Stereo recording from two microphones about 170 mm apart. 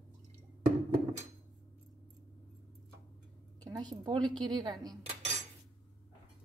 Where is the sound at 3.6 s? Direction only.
25° right (ahead or behind).